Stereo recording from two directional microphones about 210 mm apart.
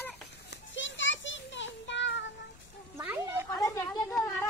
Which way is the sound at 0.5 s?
60° left (ahead or behind).